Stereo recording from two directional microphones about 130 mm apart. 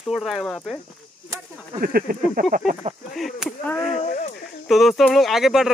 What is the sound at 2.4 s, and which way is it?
Speech, 90° right.